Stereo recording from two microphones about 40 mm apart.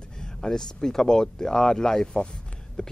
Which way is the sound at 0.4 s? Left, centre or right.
Centre.